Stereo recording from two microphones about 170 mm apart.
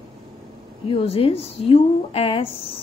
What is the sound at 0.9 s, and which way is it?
A woman's voice, 35° left (ahead or behind).